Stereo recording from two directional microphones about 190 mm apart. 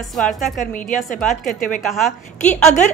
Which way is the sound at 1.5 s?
45° left (ahead or behind).